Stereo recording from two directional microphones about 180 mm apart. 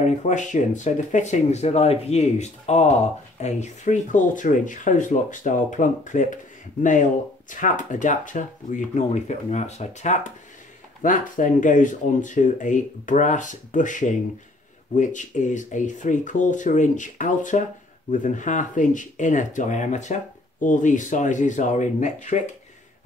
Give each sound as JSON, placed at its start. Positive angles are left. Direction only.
{"t": 0.0, "sound": "speech", "side_deg": 40}